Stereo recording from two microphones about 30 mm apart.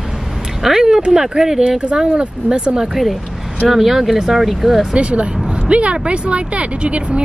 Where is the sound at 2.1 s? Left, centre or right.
Right.